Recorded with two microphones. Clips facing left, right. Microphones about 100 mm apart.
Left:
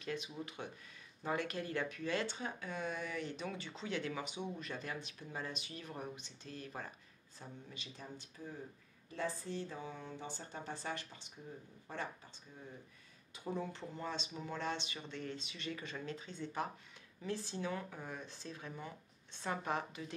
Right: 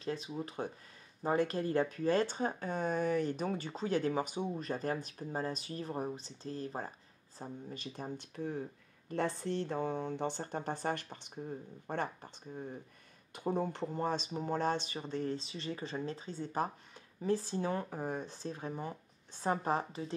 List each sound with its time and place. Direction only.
0.0 s speech: 35° right (ahead or behind)